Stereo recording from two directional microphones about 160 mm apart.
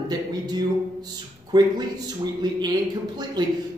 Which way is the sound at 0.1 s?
25° right (ahead or behind).